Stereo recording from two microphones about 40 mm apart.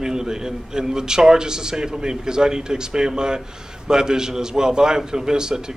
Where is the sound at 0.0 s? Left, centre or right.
Centre.